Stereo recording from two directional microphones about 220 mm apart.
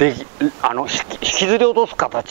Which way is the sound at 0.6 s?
20° right (ahead or behind).